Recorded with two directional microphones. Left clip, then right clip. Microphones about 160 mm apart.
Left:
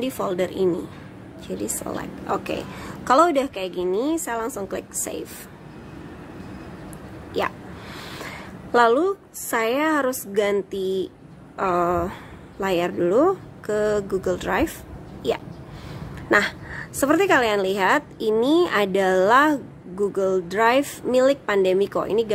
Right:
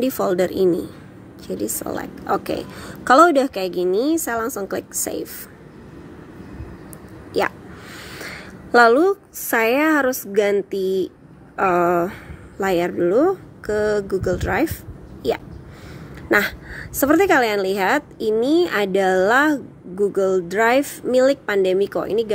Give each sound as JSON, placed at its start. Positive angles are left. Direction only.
{"t": 0.0, "sound": "a woman's voice", "side_deg": -30}
{"t": 8.3, "sound": "a woman's voice", "side_deg": -25}
{"t": 12.9, "sound": "a woman's voice", "side_deg": -5}
{"t": 16.3, "sound": "a woman's voice", "side_deg": -20}